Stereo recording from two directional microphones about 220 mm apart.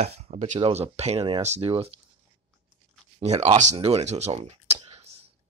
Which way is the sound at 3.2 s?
30° right (ahead or behind).